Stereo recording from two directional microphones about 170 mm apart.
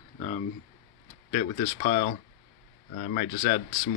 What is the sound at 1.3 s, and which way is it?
Speech, 25° left (ahead or behind).